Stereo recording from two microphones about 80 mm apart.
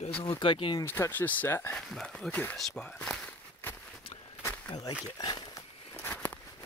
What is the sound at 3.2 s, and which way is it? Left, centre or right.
Walk, left.